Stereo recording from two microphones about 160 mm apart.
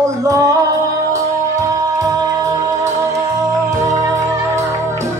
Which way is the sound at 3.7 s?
20° right (ahead or behind).